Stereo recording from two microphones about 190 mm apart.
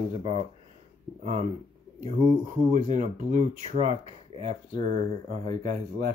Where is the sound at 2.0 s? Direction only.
40° right (ahead or behind).